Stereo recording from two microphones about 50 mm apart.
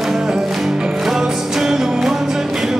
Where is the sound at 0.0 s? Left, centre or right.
Centre.